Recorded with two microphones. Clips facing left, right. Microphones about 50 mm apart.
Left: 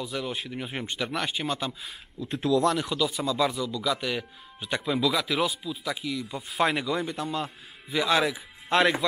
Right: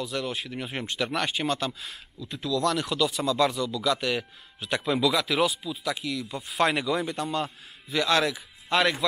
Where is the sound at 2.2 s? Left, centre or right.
Left.